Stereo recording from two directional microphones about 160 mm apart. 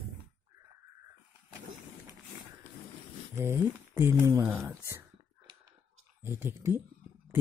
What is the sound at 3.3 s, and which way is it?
Speech, 15° right (ahead or behind).